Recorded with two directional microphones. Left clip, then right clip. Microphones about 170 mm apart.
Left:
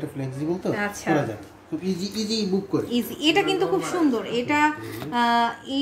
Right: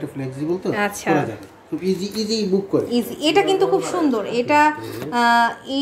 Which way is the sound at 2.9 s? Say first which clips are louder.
Right 3 dB; 10° right (ahead or behind).